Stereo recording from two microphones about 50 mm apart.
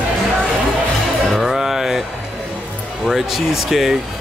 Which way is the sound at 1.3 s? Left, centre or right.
Centre.